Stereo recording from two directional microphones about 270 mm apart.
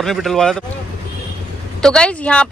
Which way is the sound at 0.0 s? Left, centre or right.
Centre.